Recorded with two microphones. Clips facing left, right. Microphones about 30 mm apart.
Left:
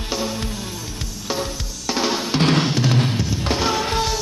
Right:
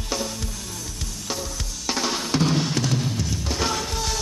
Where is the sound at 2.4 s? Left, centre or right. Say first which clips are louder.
Left 6 dB; left.